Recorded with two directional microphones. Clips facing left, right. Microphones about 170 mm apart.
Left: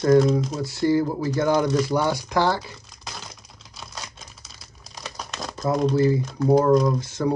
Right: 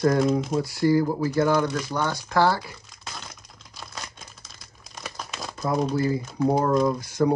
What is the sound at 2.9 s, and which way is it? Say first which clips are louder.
Typing: left 1 dB; centre (ahead or behind).